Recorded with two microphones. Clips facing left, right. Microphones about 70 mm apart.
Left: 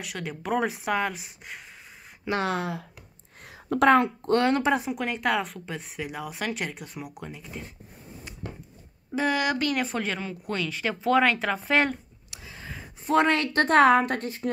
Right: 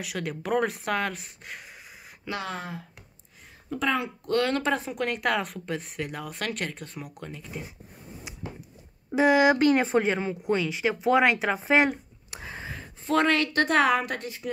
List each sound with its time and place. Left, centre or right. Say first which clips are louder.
0.0 s a woman's voice: right 2 dB; centre
2.4 s speech: left 6 dB; left
3.4 s a sound: left 8 dB; left
4.3 s speech: left 1 dB; left
4.9 s a woman's voice: even; centre
9.1 s a woman's voice: right 6 dB; centre
12.3 s a sound: right 6 dB; right
13.0 s a woman's voice: left 1 dB; left